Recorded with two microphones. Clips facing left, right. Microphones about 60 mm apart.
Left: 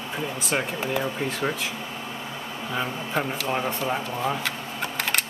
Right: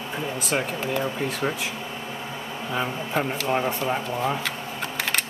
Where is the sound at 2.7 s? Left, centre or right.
Centre.